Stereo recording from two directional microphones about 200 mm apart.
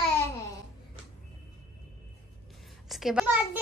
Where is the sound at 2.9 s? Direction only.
Centre (ahead or behind).